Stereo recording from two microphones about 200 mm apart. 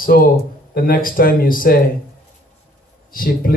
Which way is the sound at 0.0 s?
45° left (ahead or behind).